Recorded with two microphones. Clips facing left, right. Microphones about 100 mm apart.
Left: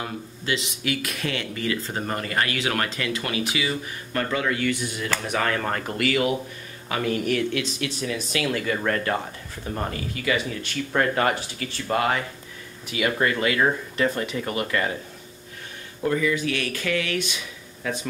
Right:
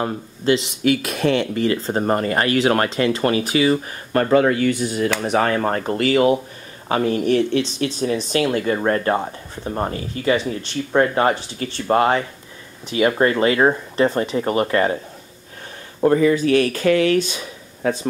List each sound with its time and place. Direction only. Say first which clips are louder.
0.0 s speech: right 10 dB; 35° right (ahead or behind)
16.0 s speech: right 8 dB; 40° right (ahead or behind)